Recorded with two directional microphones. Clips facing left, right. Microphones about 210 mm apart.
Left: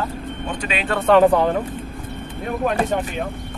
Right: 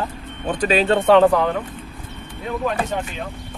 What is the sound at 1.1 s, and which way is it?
Speech, 5° right (ahead or behind).